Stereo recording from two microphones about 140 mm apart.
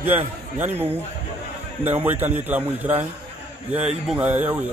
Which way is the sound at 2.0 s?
15° right (ahead or behind).